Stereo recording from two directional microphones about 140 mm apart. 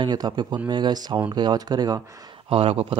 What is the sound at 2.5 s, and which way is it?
Speech, 45° right (ahead or behind).